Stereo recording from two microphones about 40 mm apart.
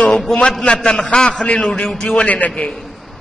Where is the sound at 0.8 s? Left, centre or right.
Centre.